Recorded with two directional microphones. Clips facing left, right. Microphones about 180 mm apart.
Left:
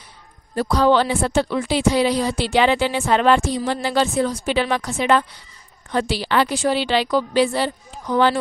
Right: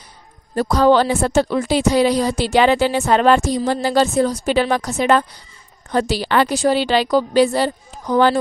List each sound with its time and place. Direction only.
0.6 s a woman's voice: 45° right (ahead or behind)